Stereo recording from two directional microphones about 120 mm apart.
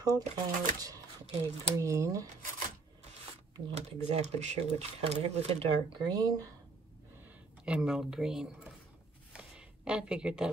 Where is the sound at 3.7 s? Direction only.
65° right (ahead or behind).